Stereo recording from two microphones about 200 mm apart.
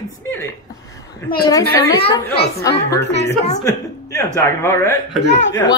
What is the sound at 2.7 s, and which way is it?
Speech, 15° left (ahead or behind).